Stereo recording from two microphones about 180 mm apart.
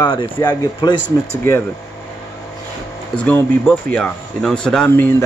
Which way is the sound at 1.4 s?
15° left (ahead or behind).